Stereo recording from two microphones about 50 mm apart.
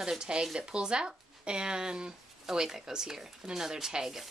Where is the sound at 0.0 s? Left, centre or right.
Centre.